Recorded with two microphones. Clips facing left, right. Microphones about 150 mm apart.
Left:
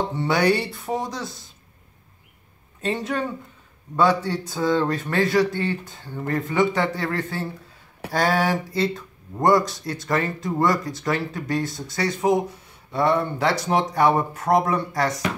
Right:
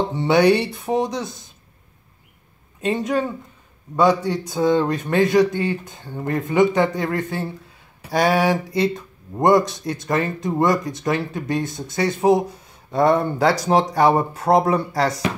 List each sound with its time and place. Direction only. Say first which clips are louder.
0.2 s speech: right 5 dB; 20° right (ahead or behind)
2.8 s a man's voice: right 4 dB; 15° right (ahead or behind)
12.9 s speech: right 4 dB; 45° right (ahead or behind)